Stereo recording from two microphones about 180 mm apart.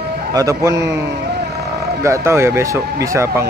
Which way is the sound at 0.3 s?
20° right (ahead or behind).